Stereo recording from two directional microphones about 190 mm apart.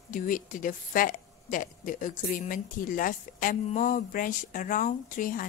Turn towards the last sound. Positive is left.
turn(degrees=45)  # may be behind; listen again after turning